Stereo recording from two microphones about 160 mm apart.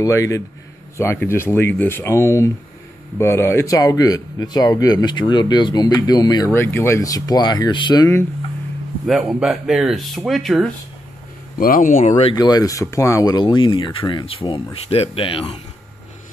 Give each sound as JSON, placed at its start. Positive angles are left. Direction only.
{"t": 0.0, "sound": "speech", "side_deg": 20}
{"t": 9.0, "sound": "speech", "side_deg": 0}
{"t": 11.6, "sound": "speech", "side_deg": 60}
{"t": 12.4, "sound": "speech", "side_deg": 25}